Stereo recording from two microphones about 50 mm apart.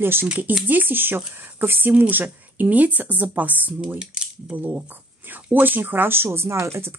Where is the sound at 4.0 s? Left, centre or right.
Centre.